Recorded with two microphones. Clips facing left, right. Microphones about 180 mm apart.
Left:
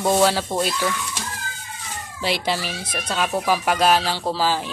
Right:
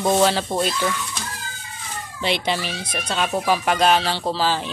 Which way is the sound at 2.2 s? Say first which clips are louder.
Right 1 dB; 5° left (ahead or behind).